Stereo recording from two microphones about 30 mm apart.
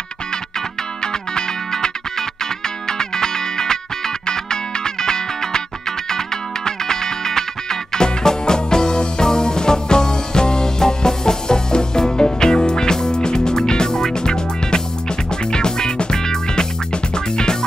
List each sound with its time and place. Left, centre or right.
1.7 s music: centre